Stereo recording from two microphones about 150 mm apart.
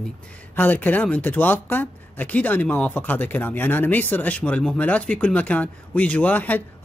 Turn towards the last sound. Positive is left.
turn(degrees=10)  # may be behind; listen again after turning